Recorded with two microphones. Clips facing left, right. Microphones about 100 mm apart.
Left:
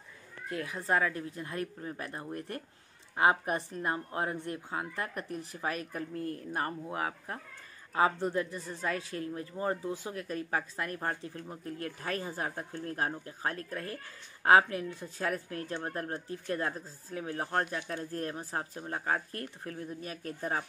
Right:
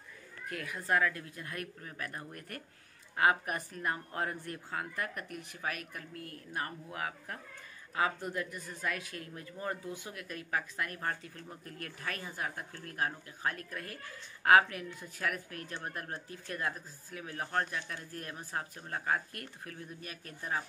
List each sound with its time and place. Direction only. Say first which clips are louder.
0.5 s speech: left 2 dB; 25° left (ahead or behind)